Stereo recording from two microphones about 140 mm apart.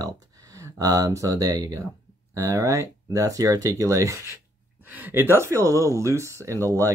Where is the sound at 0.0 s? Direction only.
25° right (ahead or behind).